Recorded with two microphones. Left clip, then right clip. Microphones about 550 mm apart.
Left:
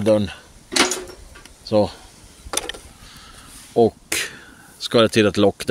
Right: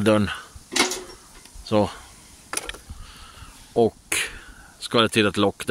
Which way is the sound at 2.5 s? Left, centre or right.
Right.